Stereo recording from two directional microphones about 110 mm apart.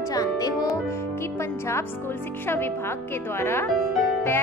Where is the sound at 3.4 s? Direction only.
20° left (ahead or behind).